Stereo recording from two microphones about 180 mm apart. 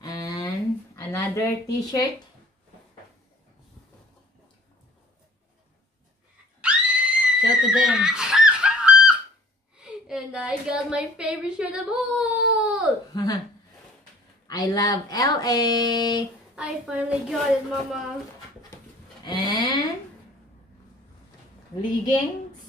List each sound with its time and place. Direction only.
0.0 s a sound: 20° left (ahead or behind)
0.9 s speech: 15° left (ahead or behind)
6.6 s screaming: 5° right (ahead or behind)
9.8 s a woman's voice: 5° right (ahead or behind)
13.1 s speech: 20° left (ahead or behind)
14.5 s speech: 20° left (ahead or behind)
16.5 s a woman's voice: 5° right (ahead or behind)
19.2 s speech: 25° left (ahead or behind)